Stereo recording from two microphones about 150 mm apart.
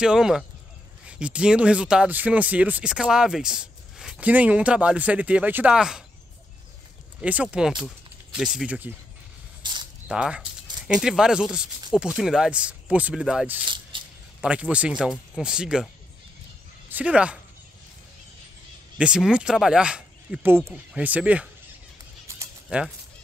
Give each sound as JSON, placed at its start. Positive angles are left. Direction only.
{"t": 0.0, "sound": "speech", "side_deg": -5}
{"t": 7.2, "sound": "speech", "side_deg": -10}
{"t": 9.6, "sound": "a sound", "side_deg": -30}
{"t": 10.0, "sound": "speech", "side_deg": -5}
{"t": 13.7, "sound": "a sound", "side_deg": -35}
{"t": 14.4, "sound": "speech", "side_deg": -10}
{"t": 16.9, "sound": "speech", "side_deg": -10}
{"t": 18.9, "sound": "speech", "side_deg": -5}
{"t": 22.7, "sound": "speech", "side_deg": -10}